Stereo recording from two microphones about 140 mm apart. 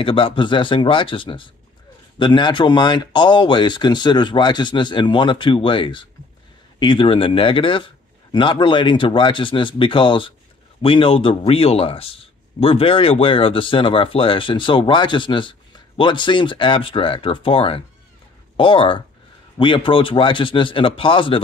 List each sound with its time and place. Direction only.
0.0 s speech: 40° left (ahead or behind)